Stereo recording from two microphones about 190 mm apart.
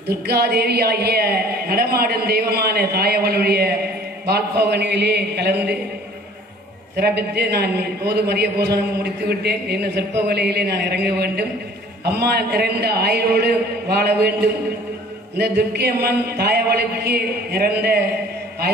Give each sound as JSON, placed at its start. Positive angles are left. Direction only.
{"t": 0.0, "sound": "a man's voice", "side_deg": -55}
{"t": 7.0, "sound": "a man's voice", "side_deg": -60}
{"t": 15.3, "sound": "a man's voice", "side_deg": -60}